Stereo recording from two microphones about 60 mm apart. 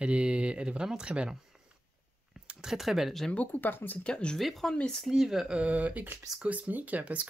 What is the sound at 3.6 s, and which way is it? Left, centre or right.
Speech, left.